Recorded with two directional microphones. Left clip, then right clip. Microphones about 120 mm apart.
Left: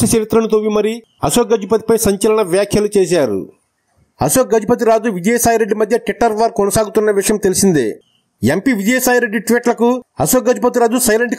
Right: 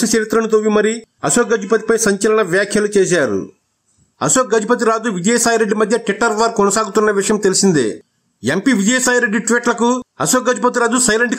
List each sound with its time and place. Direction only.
0.0 s speech: 35° left (ahead or behind)
4.2 s speech: 50° left (ahead or behind)